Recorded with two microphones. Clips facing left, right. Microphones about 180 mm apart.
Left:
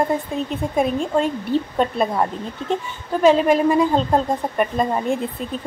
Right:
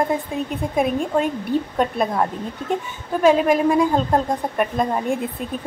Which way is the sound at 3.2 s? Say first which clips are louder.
Left 1 dB; 5° right (ahead or behind).